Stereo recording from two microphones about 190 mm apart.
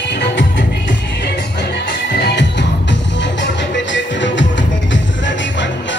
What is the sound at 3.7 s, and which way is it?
Music, 70° left (ahead or behind).